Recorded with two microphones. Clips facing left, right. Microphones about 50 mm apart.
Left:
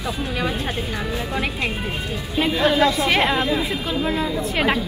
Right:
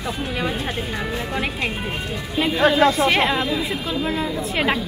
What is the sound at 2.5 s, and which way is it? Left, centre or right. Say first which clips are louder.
Speech: right 2 dB; right.